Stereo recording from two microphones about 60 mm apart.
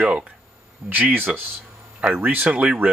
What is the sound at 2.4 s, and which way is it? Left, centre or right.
Speech, centre.